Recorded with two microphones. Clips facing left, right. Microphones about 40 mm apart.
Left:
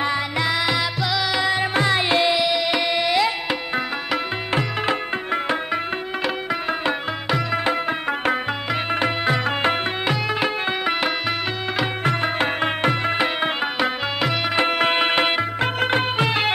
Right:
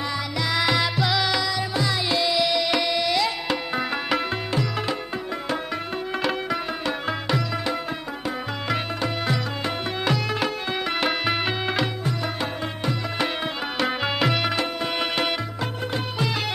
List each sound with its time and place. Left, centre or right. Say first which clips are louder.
0.5 s music: right 3 dB; centre
1.4 s music: left 5 dB; left
2.3 s tabla: left 1 dB; centre
4.6 s music: left 6 dB; left
6.2 s music: left 2 dB; centre
9.2 s music: left 6 dB; left
10.0 s music: even; left
11.0 s music: left 1 dB; centre
12.0 s music: left 6 dB; left
13.7 s music: left 1 dB; centre
15.0 s music: left 6 dB; left